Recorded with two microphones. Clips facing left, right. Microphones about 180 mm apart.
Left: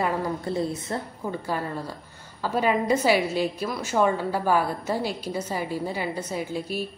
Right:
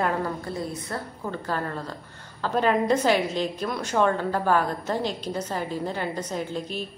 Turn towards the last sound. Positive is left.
turn(degrees=10)  # may be behind; listen again after turning